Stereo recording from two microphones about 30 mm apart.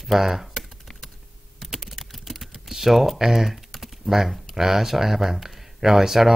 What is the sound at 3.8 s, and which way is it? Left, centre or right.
Speech, centre.